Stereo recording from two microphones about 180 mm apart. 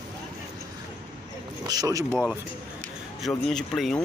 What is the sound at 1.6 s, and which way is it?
Speech, 20° right (ahead or behind).